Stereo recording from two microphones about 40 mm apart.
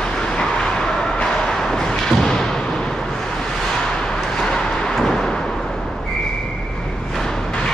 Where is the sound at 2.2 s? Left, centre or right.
Centre.